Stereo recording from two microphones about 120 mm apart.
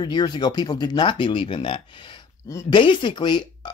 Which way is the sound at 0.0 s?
35° left (ahead or behind).